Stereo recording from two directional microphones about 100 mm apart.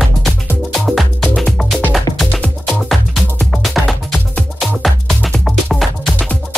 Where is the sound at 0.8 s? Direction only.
Centre (ahead or behind).